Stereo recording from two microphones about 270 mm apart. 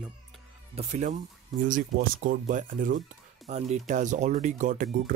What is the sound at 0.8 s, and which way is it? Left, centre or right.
Speech, right.